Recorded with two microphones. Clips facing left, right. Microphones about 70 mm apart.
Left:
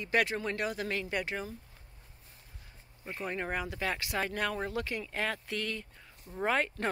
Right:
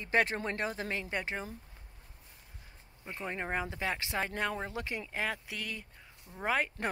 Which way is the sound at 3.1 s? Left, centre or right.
Centre.